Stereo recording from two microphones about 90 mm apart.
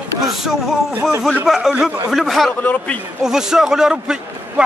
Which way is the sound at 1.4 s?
5° right (ahead or behind).